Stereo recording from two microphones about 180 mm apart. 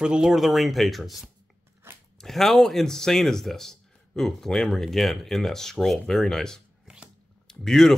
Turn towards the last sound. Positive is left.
turn(degrees=0)  # may be behind; listen again after turning